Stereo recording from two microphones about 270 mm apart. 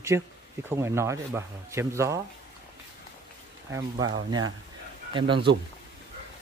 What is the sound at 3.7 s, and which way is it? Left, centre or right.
Speech, centre.